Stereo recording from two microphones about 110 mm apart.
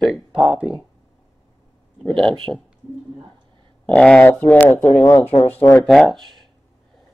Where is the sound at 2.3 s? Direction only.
50° right (ahead or behind).